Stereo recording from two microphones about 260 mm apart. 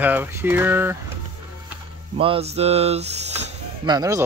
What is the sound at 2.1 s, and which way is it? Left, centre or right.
Speech, right.